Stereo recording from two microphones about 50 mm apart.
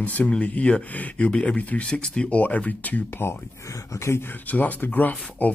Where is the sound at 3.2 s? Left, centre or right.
Left.